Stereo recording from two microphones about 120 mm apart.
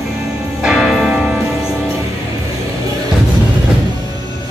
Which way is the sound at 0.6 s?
5° right (ahead or behind).